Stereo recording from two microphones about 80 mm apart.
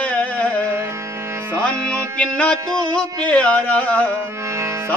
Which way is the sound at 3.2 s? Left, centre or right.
Centre.